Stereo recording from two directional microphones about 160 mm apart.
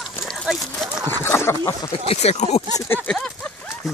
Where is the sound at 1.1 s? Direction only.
15° left (ahead or behind).